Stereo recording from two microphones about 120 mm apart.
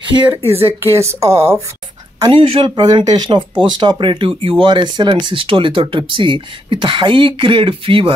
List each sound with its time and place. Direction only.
0.5 s a woman's voice: 20° right (ahead or behind)
2.3 s speech: 40° right (ahead or behind)